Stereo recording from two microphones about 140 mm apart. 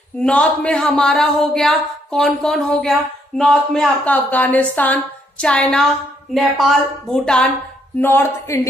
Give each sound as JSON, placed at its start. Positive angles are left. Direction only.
{"t": 0.2, "sound": "a woman's voice", "side_deg": 10}
{"t": 8.0, "sound": "speech", "side_deg": 15}